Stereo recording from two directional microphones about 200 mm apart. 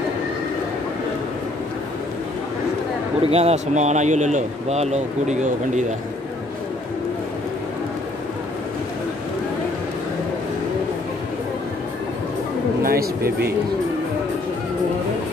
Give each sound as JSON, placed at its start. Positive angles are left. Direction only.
{"t": 3.2, "sound": "speech", "side_deg": -30}
{"t": 12.8, "sound": "speech", "side_deg": -50}